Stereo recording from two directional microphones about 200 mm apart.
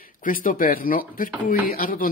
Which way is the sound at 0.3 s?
45° left (ahead or behind).